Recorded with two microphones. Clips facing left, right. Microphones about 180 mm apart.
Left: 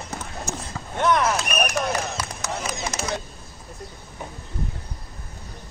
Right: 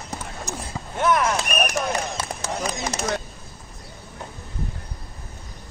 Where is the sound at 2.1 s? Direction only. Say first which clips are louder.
Right 1 dB; 30° right (ahead or behind).